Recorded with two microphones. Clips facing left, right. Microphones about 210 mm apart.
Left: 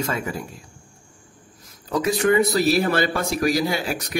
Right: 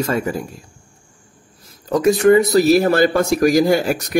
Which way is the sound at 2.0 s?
45° right (ahead or behind).